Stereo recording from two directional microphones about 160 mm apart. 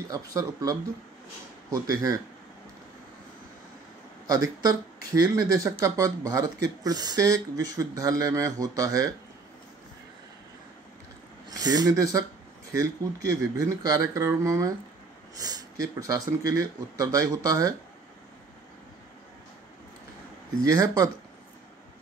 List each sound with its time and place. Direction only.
0.1 s speech: 20° right (ahead or behind)
4.6 s speech: 20° right (ahead or behind)
11.5 s speech: 25° right (ahead or behind)
13.3 s speech: 20° right (ahead or behind)
20.6 s speech: 25° right (ahead or behind)